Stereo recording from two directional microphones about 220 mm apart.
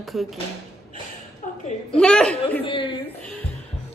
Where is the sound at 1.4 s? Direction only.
35° left (ahead or behind).